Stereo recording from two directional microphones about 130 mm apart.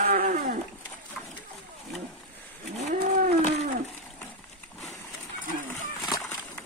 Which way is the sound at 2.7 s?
70° right (ahead or behind).